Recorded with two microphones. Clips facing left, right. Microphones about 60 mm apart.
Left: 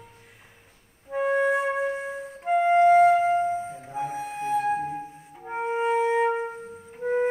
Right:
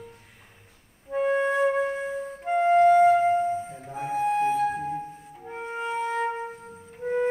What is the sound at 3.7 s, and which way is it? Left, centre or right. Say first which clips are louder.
Flute: left 3 dB; centre.